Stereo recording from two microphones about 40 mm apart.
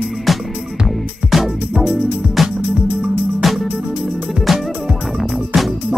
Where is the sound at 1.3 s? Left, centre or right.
Centre.